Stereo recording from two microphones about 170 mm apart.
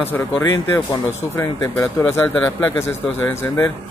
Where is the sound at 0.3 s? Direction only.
20° left (ahead or behind).